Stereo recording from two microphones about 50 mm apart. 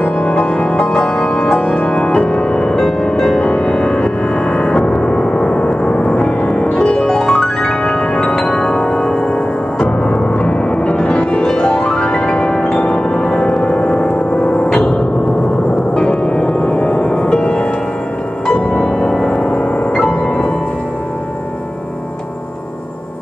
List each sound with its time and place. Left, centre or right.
0.2 s music: centre
14.8 s gong: centre
15.9 s music: centre